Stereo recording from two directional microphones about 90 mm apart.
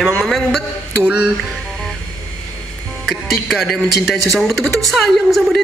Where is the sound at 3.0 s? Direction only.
Centre (ahead or behind).